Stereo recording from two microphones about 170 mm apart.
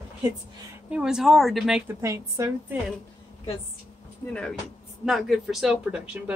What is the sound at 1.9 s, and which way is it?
Speech, 15° right (ahead or behind).